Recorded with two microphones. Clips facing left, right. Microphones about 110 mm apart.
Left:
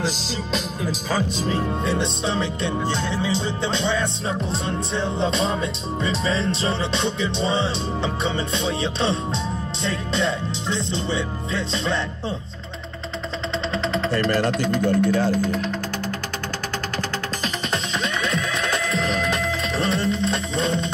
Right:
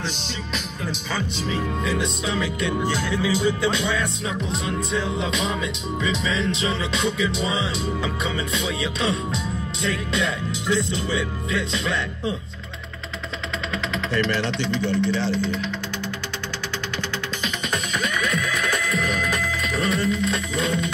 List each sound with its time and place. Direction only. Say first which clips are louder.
1.1 s music: left 4 dB; 35° left (ahead or behind)
13.9 s speech: left 2 dB; 35° left (ahead or behind)
18.0 s music: even; 30° left (ahead or behind)